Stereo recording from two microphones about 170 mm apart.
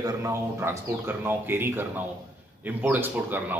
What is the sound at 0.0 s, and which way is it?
A man's voice, 15° right (ahead or behind).